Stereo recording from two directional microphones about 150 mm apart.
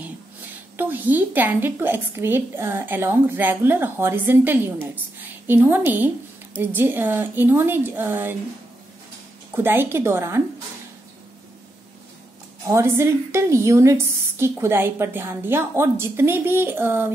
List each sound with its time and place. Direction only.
0.7 s a woman's voice: 10° right (ahead or behind)
9.5 s a woman's voice: 15° right (ahead or behind)
12.6 s a woman's voice: 20° right (ahead or behind)